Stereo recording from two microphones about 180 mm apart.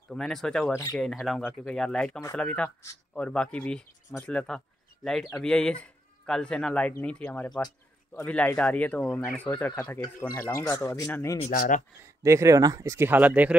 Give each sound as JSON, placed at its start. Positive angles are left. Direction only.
{"t": 0.1, "sound": "speech", "side_deg": 0}
{"t": 11.4, "sound": "speech", "side_deg": 50}
{"t": 12.2, "sound": "speech", "side_deg": -15}